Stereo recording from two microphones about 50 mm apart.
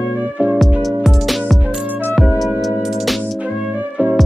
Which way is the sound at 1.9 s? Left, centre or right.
Right.